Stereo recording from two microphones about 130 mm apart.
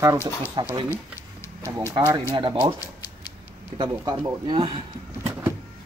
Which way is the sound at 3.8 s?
35° right (ahead or behind).